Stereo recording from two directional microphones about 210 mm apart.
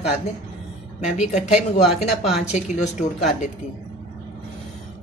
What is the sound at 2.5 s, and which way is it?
Speech, 35° left (ahead or behind).